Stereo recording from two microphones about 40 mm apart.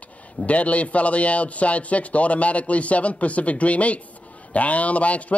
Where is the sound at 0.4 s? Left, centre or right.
Left.